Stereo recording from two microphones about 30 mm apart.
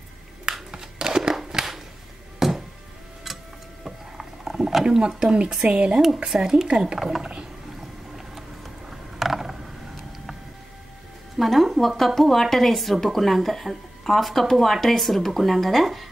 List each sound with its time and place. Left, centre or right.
0.5 s a sound: right
1.5 s a sound: centre
2.4 s music: centre
3.8 s a sound: centre
5.0 s speech: right
5.6 s speech: right
7.0 s speech: centre
8.9 s mechanisms: centre
11.3 s a woman's voice: centre